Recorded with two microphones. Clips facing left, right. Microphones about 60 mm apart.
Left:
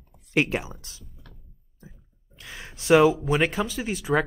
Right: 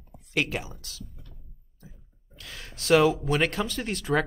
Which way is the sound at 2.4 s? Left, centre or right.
Centre.